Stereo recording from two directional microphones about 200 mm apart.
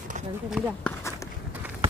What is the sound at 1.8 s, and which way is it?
Run, 30° right (ahead or behind).